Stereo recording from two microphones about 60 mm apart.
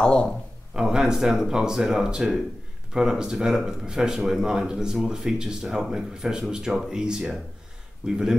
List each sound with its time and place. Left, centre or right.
0.0 s a man's voice: centre
0.7 s speech: centre